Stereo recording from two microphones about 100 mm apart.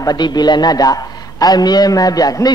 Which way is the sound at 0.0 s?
45° left (ahead or behind).